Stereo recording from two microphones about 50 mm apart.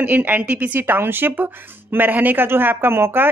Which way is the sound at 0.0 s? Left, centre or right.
Right.